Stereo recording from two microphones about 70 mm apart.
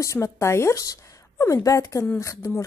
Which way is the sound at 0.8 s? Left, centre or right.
Left.